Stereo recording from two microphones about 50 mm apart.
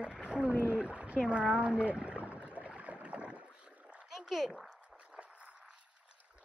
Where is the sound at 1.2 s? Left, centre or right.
Right.